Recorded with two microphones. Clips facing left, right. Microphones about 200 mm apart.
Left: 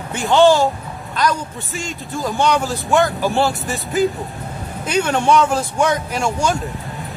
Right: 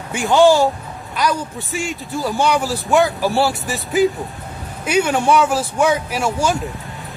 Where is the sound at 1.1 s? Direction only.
10° right (ahead or behind).